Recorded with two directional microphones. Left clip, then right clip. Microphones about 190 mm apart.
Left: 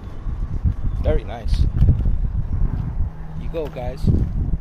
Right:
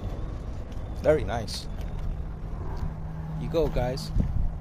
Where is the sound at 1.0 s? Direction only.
25° right (ahead or behind).